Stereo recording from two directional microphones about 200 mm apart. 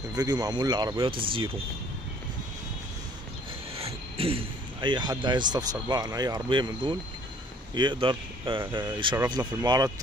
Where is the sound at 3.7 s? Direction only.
30° right (ahead or behind).